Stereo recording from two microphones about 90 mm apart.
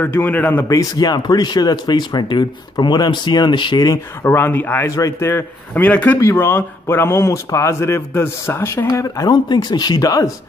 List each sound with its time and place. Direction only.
0.0 s speech: 20° left (ahead or behind)
0.7 s speech: 40° left (ahead or behind); by 3.9 s 55° left (ahead or behind)
3.9 s speech: 25° left (ahead or behind)
4.9 s a man's voice: 40° left (ahead or behind)
5.9 s a man's voice: 15° left (ahead or behind)
6.3 s speech: 25° left (ahead or behind)
8.8 s speech: 45° left (ahead or behind)